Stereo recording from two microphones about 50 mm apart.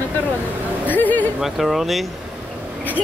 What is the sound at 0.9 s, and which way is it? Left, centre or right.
Speech, left.